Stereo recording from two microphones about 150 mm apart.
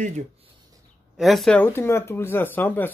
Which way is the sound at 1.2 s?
Centre (ahead or behind).